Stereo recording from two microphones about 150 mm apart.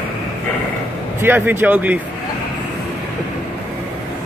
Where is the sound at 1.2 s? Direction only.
15° right (ahead or behind).